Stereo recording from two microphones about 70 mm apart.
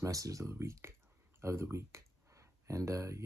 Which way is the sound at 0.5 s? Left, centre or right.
Right.